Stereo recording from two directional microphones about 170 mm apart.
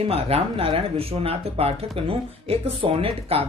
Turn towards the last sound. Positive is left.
turn(degrees=-35)  # may be behind; listen again after turning